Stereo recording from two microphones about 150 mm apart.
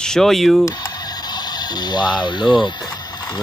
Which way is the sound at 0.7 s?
25° left (ahead or behind).